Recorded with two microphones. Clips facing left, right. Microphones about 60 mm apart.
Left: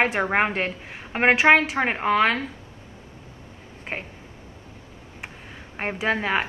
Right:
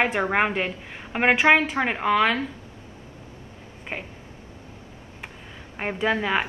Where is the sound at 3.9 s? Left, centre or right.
Left.